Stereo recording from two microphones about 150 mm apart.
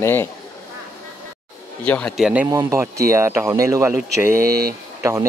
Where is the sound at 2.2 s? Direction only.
10° right (ahead or behind).